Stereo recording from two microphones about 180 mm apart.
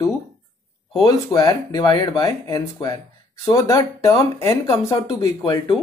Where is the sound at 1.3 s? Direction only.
20° left (ahead or behind).